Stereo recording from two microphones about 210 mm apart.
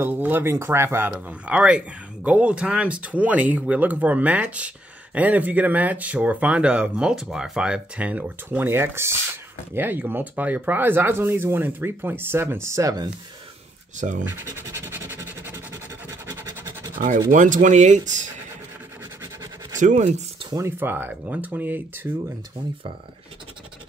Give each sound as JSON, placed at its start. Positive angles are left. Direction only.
{"t": 0.0, "sound": "speech", "side_deg": -10}
{"t": 13.9, "sound": "speech", "side_deg": -35}
{"t": 14.7, "sound": "rub", "side_deg": -10}
{"t": 17.3, "sound": "speech", "side_deg": -40}
{"t": 19.2, "sound": "scratch", "side_deg": -15}
{"t": 19.8, "sound": "speech", "side_deg": -35}
{"t": 20.4, "sound": "speech", "side_deg": -15}